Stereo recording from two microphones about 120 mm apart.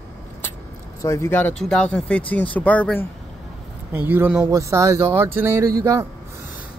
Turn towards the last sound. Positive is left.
turn(degrees=-25)  # may be behind; listen again after turning